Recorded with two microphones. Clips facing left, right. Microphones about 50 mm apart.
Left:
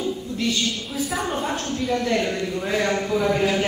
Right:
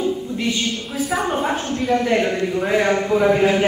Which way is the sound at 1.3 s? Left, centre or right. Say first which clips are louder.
Right 4 dB; centre.